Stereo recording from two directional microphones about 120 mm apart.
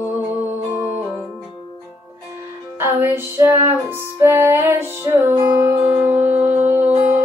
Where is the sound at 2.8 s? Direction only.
20° right (ahead or behind).